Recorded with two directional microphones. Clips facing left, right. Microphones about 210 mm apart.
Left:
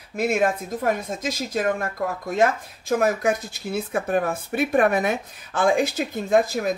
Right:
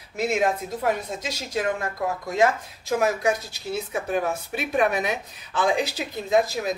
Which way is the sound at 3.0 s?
50° left (ahead or behind).